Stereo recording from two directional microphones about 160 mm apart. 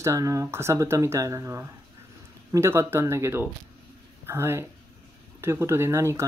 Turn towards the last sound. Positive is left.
turn(degrees=-20)  # may be behind; listen again after turning